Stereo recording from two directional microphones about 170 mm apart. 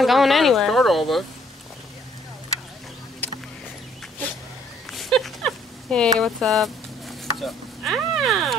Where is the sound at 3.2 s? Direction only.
10° left (ahead or behind).